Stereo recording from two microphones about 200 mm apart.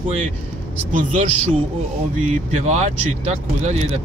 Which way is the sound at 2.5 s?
35° right (ahead or behind).